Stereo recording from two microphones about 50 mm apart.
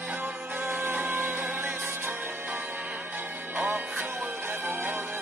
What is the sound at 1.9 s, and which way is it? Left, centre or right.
Music, right.